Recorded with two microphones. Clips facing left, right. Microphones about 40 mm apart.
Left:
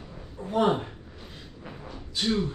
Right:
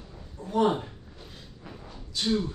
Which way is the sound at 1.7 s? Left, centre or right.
Centre.